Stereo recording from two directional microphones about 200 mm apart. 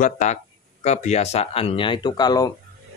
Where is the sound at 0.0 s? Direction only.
35° left (ahead or behind); by 2.5 s 20° left (ahead or behind).